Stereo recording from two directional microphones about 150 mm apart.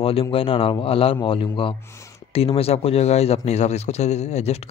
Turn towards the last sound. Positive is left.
turn(degrees=45)  # may be behind; listen again after turning